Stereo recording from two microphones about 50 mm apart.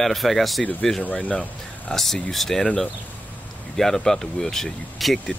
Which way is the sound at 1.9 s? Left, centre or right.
Centre.